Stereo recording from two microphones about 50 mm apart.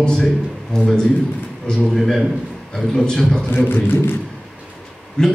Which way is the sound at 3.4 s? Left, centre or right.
Left.